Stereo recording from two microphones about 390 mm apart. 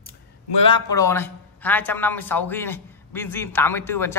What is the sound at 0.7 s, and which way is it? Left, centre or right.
A man's voice, centre.